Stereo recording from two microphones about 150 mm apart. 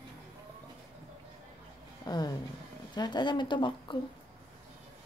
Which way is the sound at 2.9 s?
30° left (ahead or behind).